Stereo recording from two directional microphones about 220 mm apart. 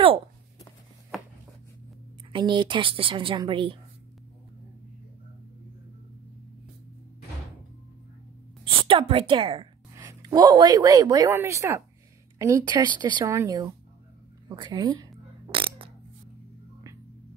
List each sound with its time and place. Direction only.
2.3 s a woman's voice: 20° right (ahead or behind)
8.8 s a woman's voice: 25° right (ahead or behind)
15.5 s a sound: 25° right (ahead or behind)